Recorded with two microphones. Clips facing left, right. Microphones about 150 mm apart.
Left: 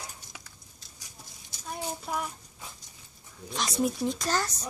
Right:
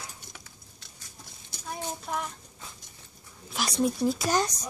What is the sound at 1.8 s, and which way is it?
Child singing, 10° left (ahead or behind).